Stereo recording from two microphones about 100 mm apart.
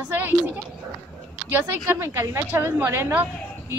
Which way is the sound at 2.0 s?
30° right (ahead or behind).